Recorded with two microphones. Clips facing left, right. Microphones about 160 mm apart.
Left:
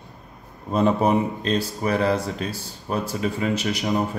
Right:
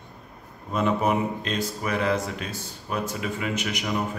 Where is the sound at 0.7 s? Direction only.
35° left (ahead or behind).